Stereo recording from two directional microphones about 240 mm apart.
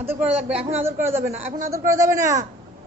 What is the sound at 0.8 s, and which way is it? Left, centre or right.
A woman's voice, centre.